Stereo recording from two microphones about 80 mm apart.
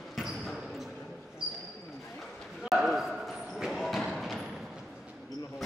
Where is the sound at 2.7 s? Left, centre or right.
Centre.